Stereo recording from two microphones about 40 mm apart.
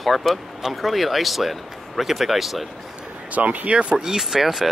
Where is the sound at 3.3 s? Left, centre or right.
Right; by 4.7 s centre.